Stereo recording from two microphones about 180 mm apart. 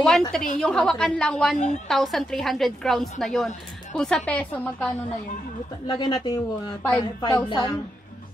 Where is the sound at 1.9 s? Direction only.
Centre (ahead or behind).